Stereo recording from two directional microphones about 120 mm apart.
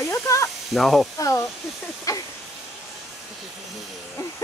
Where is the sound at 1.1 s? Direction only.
25° left (ahead or behind).